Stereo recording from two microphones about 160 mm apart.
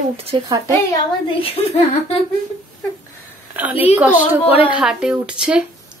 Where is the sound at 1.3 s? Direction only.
35° left (ahead or behind).